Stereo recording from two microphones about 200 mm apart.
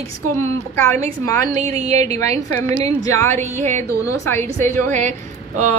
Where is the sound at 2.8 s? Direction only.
15° left (ahead or behind).